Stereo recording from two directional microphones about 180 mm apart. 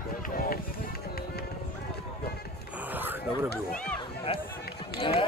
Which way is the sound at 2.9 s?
10° right (ahead or behind).